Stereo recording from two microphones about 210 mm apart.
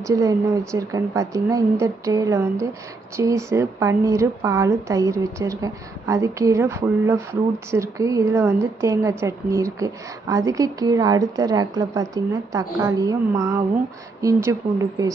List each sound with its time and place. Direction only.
0.0 s a woman's voice: 15° right (ahead or behind)